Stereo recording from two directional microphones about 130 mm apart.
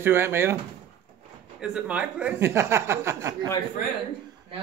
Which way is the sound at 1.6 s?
10° right (ahead or behind).